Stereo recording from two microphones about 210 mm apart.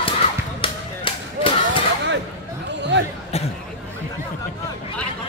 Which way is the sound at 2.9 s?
60° right (ahead or behind).